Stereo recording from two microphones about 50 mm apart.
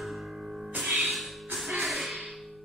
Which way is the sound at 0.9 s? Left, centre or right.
Centre.